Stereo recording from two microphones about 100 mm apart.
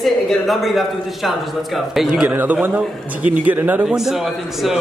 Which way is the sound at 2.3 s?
20° right (ahead or behind).